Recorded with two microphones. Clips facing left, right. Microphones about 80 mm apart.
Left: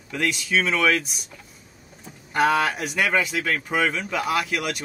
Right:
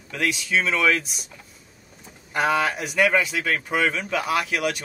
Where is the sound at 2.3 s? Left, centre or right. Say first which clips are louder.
Left 1 dB; centre.